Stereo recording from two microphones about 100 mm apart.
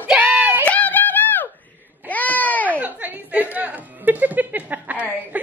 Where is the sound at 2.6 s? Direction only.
15° right (ahead or behind).